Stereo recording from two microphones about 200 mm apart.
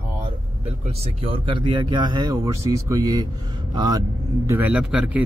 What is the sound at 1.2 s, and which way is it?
Speech, 25° right (ahead or behind).